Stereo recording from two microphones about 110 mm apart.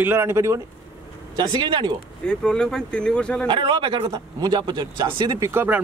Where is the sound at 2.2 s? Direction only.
10° left (ahead or behind).